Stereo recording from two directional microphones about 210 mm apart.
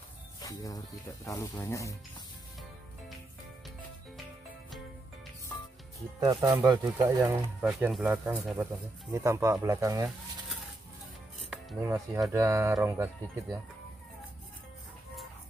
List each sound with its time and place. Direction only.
0.4 s speech: 15° left (ahead or behind)
5.5 s music: 10° left (ahead or behind)
6.1 s speech: 20° right (ahead or behind)
7.6 s speech: centre (ahead or behind)
9.1 s speech: 15° right (ahead or behind)
11.5 s speech: 10° right (ahead or behind)